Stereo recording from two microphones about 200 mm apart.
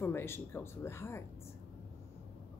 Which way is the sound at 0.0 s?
10° left (ahead or behind).